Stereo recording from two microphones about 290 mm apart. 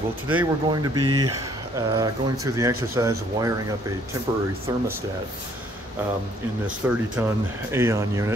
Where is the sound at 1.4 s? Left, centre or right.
Centre.